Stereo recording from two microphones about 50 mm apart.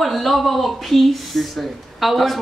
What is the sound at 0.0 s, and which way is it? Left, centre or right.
Speech, centre.